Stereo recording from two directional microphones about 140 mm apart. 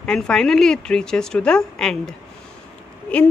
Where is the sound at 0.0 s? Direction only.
5° left (ahead or behind).